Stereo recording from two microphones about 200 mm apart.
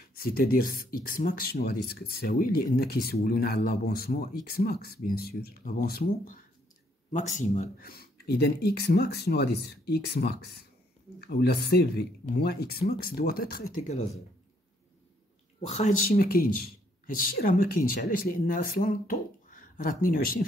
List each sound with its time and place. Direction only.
0.1 s speech: 50° left (ahead or behind)
7.1 s speech: 35° left (ahead or behind)
15.6 s speech: 35° left (ahead or behind)